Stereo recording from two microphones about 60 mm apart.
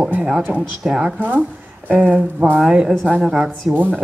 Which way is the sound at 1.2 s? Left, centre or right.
Right.